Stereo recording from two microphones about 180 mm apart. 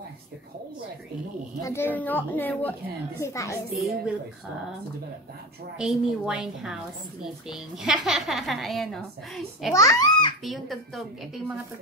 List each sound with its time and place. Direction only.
1.6 s a woman's voice: 15° left (ahead or behind)
3.7 s a woman's voice: centre (ahead or behind)
5.8 s a woman's voice: 5° right (ahead or behind)
9.8 s a child's voice: 20° left (ahead or behind)
10.4 s a woman's voice: centre (ahead or behind)